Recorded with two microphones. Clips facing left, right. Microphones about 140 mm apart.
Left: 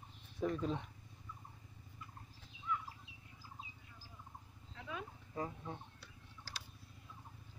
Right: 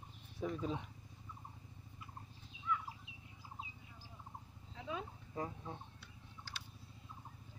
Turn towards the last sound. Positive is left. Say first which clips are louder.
# even
turn(degrees=40)  # may be behind; listen again after turning